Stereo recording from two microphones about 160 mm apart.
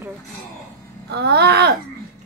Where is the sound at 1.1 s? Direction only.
90° right.